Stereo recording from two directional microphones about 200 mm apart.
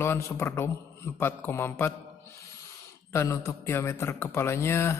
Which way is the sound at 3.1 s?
15° left (ahead or behind).